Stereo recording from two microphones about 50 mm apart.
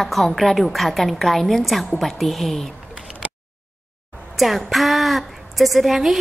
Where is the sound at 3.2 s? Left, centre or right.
Right.